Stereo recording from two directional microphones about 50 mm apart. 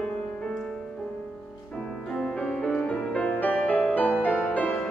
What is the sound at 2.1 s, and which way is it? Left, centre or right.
Music, left.